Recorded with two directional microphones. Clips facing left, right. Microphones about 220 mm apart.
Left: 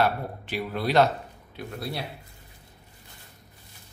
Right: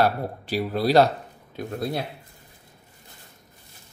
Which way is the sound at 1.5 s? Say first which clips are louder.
Right 6 dB; 45° right (ahead or behind).